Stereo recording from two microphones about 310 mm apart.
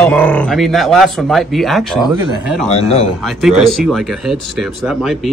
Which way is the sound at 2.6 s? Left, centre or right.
Centre.